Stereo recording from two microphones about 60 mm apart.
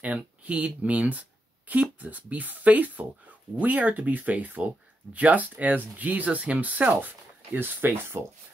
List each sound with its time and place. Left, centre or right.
0.4 s speech: right